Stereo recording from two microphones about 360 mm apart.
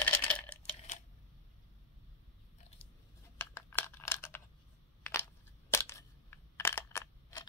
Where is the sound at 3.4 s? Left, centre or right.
Centre.